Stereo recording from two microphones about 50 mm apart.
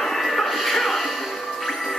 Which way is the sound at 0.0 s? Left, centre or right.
Centre.